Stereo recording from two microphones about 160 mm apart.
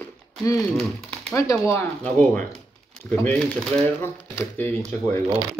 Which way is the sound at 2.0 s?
5° left (ahead or behind).